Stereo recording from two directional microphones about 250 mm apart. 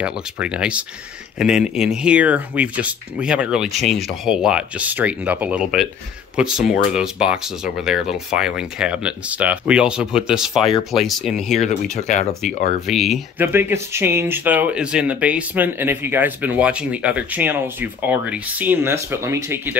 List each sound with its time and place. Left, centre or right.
0.0 s speech: centre
11.5 s speech: left
12.8 s speech: centre